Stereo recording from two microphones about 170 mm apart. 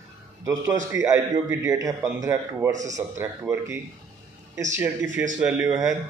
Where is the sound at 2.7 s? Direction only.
45° right (ahead or behind).